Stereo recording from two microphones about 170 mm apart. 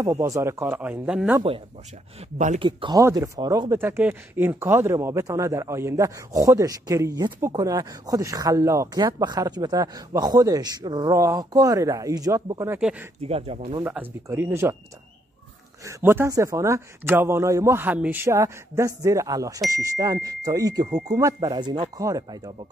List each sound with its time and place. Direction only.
0.0 s a man's voice: 15° right (ahead or behind)
2.3 s speech: 45° right (ahead or behind)
2.6 s speech: 30° right (ahead or behind)
3.0 s speech: 20° right (ahead or behind)
3.8 s speech: 10° right (ahead or behind)
13.2 s speech: 35° right (ahead or behind)
13.8 s a man's voice: 10° right (ahead or behind)
15.8 s a man's voice: 15° right (ahead or behind)